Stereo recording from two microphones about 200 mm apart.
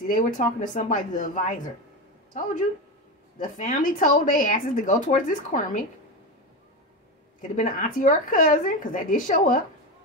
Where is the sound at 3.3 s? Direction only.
40° left (ahead or behind).